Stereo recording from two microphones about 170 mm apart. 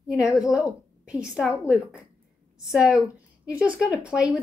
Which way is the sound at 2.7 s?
5° right (ahead or behind).